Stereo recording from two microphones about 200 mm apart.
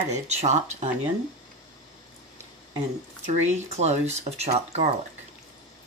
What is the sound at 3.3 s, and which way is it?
Speech, 35° right (ahead or behind).